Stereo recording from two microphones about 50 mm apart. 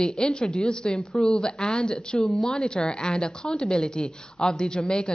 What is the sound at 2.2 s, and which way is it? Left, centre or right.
A woman's voice, centre.